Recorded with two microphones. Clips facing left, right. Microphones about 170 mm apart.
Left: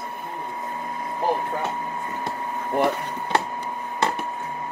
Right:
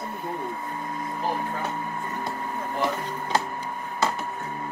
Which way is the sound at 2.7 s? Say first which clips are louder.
Left 6 dB; 60° left (ahead or behind).